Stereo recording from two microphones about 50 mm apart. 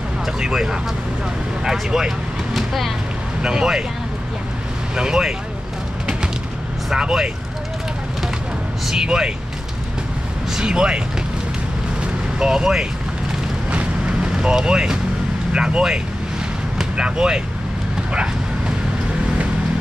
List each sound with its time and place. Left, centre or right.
0.4 s speech: centre
3.4 s speech: centre
4.9 s speech: centre
6.9 s speech: centre
8.8 s speech: centre
10.5 s speech: centre
12.4 s speech: centre
13.7 s vehicle: right
14.3 s speech: centre